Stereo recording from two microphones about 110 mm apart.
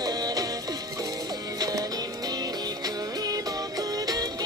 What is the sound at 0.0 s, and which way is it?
Music, 35° right (ahead or behind).